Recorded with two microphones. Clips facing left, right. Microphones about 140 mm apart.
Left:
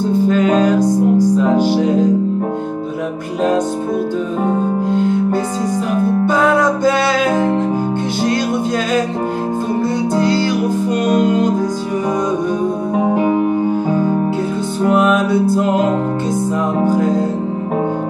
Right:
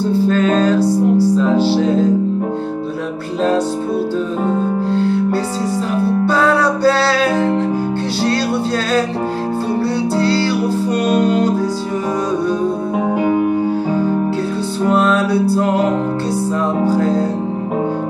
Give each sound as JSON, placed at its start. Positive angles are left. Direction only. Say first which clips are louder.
{"t": 0.0, "sound": "music", "louder": "left 1 dB", "side_deg": 15}
{"t": 4.8, "sound": "music", "louder": "left 1 dB", "side_deg": 15}
{"t": 10.1, "sound": "music", "louder": "left 1 dB", "side_deg": 15}
{"t": 14.9, "sound": "music", "louder": "left 1 dB", "side_deg": 15}